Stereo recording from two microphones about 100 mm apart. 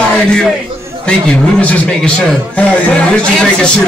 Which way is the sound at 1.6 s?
10° left (ahead or behind).